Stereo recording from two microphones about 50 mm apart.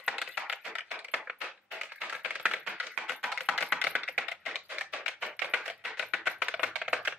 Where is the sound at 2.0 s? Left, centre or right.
Right.